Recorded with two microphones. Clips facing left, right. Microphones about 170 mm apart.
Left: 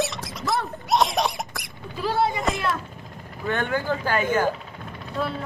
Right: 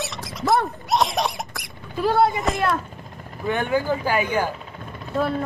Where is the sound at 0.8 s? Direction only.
Centre (ahead or behind).